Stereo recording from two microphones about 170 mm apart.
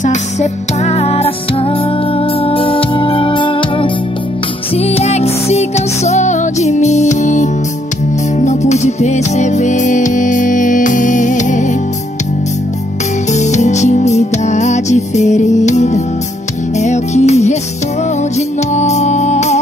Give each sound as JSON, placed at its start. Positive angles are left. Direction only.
{"t": 0.0, "sound": "music", "side_deg": 45}
{"t": 13.3, "sound": "music", "side_deg": 45}
{"t": 18.7, "sound": "music", "side_deg": 40}